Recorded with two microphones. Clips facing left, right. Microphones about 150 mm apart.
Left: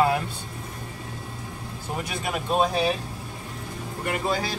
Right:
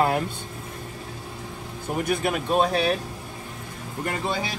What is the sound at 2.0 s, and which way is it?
Speech, 55° right (ahead or behind).